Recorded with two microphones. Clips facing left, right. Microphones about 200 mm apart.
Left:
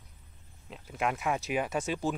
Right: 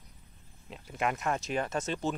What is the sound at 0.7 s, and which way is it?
Speech, centre (ahead or behind).